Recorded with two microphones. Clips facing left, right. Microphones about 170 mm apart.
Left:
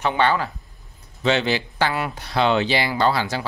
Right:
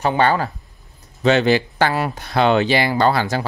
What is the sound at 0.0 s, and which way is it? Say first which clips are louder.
Speech: right 3 dB; 40° right (ahead or behind).